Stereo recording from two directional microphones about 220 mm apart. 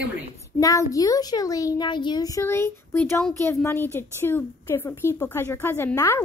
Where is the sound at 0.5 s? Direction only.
15° left (ahead or behind).